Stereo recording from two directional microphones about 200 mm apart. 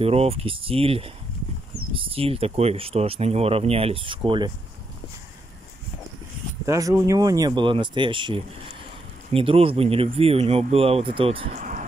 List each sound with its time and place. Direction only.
0.0 s speech: 30° right (ahead or behind)
6.6 s speech: 15° right (ahead or behind)
11.5 s a sound: 40° right (ahead or behind)